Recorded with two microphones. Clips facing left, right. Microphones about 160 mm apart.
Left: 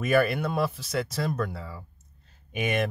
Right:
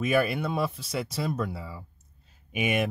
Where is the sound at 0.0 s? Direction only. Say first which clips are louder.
Left 2 dB; centre (ahead or behind).